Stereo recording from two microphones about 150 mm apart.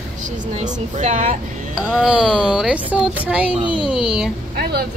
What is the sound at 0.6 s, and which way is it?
Speech, 50° right (ahead or behind).